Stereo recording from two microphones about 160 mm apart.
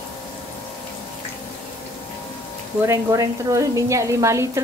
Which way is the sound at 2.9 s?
20° right (ahead or behind).